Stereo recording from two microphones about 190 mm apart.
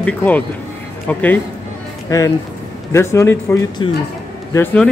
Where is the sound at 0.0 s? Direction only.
10° left (ahead or behind).